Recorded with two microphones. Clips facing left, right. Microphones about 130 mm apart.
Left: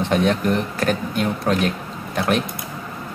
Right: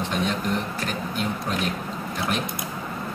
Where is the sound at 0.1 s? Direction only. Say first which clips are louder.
Left 8 dB; 60° left (ahead or behind).